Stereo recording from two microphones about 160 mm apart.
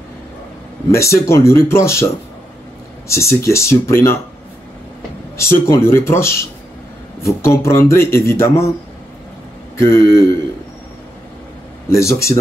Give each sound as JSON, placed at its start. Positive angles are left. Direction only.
{"t": 0.9, "sound": "a man's voice", "side_deg": 20}
{"t": 3.1, "sound": "a man's voice", "side_deg": 15}
{"t": 5.4, "sound": "a man's voice", "side_deg": 15}
{"t": 9.8, "sound": "a man's voice", "side_deg": 15}
{"t": 11.9, "sound": "a man's voice", "side_deg": 15}